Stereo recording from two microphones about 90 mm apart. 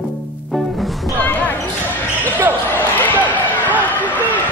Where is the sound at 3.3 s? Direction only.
20° left (ahead or behind).